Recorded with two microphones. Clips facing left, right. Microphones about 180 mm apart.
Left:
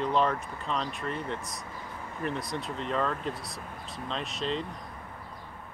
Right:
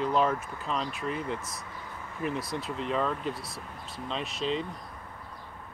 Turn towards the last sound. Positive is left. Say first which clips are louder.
# right 1 dB
turn(degrees=0)  # may be behind; listen again after turning